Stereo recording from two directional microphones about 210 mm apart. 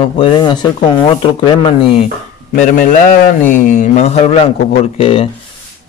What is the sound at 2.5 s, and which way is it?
Speech, 40° left (ahead or behind).